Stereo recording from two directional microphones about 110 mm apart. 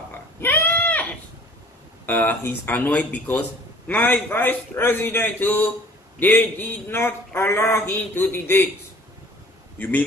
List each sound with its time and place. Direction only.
0.4 s pig: 15° left (ahead or behind)
2.0 s a man's voice: 15° left (ahead or behind)
9.8 s speech: 15° left (ahead or behind)